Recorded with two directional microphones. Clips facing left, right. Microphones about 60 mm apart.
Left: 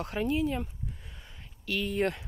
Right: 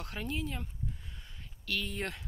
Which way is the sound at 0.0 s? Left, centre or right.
Left.